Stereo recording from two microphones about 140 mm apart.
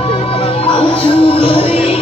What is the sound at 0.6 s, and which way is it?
Music, 40° left (ahead or behind).